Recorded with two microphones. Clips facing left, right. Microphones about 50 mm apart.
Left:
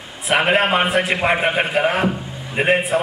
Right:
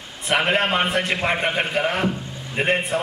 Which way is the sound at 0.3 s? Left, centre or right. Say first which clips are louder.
Left 4 dB; centre.